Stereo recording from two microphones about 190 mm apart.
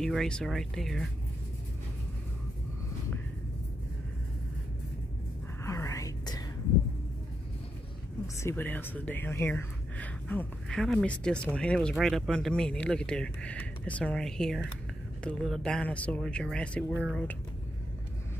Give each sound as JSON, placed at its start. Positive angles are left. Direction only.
{"t": 0.0, "sound": "speech", "side_deg": 5}
{"t": 5.6, "sound": "whispering", "side_deg": 15}
{"t": 8.4, "sound": "speech", "side_deg": 10}